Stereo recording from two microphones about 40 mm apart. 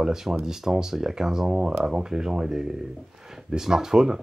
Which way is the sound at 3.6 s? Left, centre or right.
Centre.